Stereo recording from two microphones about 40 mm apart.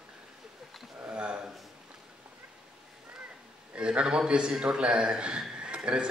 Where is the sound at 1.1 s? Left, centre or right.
Right.